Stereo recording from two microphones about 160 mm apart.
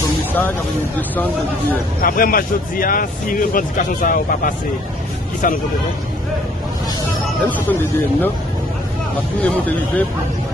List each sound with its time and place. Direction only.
1.1 s speech: 10° left (ahead or behind)
2.0 s speech: 65° left (ahead or behind)
7.4 s speech: 10° left (ahead or behind)
9.4 s speech: 10° left (ahead or behind)